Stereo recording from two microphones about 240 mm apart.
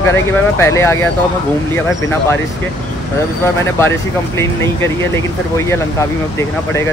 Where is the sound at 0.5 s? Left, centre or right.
Centre.